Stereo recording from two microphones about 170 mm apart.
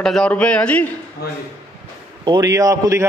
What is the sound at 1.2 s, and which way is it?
Speech, 70° left (ahead or behind).